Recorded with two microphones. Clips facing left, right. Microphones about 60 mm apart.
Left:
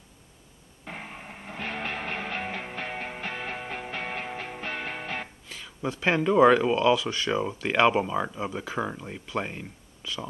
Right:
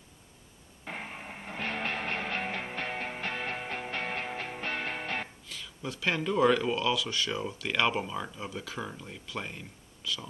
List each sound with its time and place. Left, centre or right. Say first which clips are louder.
0.8 s music: even; centre
5.5 s speech: left 6 dB; left